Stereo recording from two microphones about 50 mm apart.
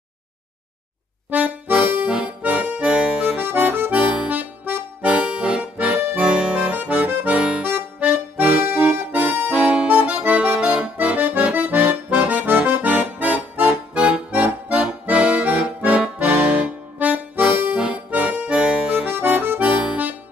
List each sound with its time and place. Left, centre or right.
1.3 s accordion: right
2.0 s accordion: right
3.4 s accordion: right
3.9 s accordion: right
4.3 s music: right
5.0 s accordion: right
6.8 s accordion: right
9.6 s accordion: right
17.7 s accordion: right
19.0 s accordion: right